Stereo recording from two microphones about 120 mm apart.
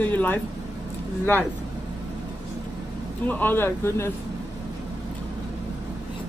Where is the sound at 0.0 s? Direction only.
15° left (ahead or behind).